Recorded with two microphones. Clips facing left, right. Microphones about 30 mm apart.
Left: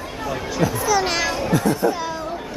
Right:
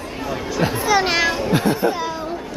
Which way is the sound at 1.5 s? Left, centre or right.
Right.